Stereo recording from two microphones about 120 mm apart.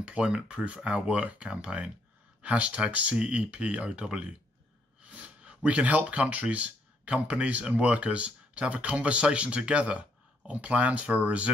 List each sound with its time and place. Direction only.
0.0 s speech: 10° right (ahead or behind)